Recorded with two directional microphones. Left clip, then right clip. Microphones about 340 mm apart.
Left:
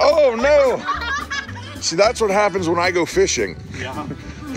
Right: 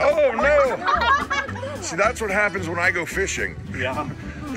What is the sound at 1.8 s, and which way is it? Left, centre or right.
Speech, centre.